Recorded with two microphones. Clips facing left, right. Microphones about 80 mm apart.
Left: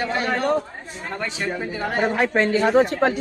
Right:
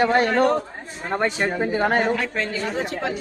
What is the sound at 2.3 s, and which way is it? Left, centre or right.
Speech, left.